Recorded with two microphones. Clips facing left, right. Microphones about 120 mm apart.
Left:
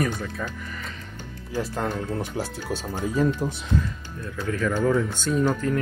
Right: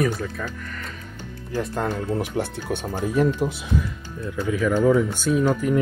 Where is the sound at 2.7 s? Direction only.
55° right (ahead or behind).